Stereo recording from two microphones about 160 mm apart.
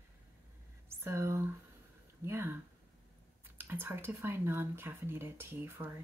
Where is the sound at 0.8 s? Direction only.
15° right (ahead or behind).